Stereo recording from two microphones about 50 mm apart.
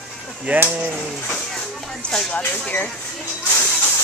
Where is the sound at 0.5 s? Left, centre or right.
Right.